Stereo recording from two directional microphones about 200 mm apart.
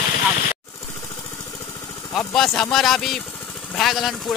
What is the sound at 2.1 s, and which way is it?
Vehicle, centre (ahead or behind).